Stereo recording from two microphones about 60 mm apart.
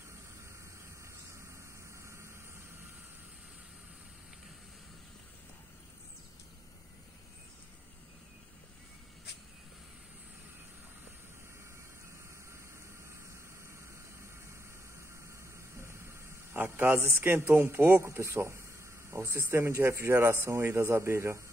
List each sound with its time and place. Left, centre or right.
2.0 s vehicle: right
15.7 s a man's voice: right
18.0 s speech: right